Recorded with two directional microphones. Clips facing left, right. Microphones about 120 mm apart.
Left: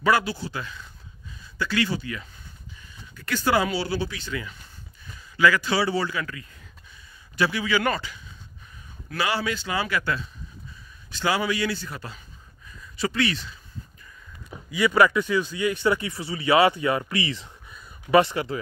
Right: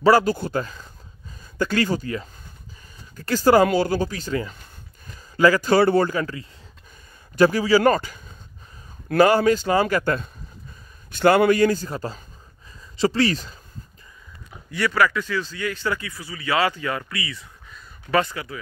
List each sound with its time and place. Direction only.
0.0 s a man's voice: 40° right (ahead or behind)
14.7 s speech: 10° left (ahead or behind)
15.0 s speech: 20° left (ahead or behind)
17.6 s a sound: 15° left (ahead or behind)